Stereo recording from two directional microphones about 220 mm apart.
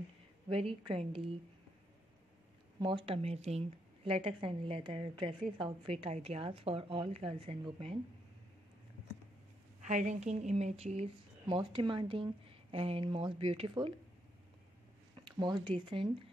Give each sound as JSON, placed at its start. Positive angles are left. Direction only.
{"t": 0.5, "sound": "a woman's voice", "side_deg": -25}
{"t": 2.8, "sound": "a woman's voice", "side_deg": -20}
{"t": 9.8, "sound": "a woman's voice", "side_deg": -30}
{"t": 15.1, "sound": "speech", "side_deg": -20}